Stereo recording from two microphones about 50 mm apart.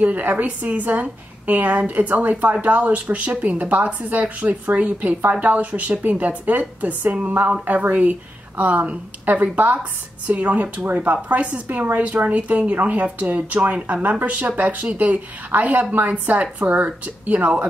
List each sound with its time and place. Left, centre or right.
0.0 s a woman's voice: right